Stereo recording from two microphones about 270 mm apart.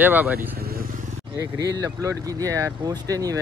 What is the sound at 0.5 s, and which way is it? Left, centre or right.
Vehicle, right.